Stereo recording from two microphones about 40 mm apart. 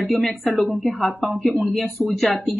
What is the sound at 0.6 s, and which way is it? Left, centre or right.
Speech, left.